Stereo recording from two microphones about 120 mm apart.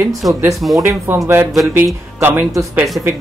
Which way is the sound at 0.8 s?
20° right (ahead or behind).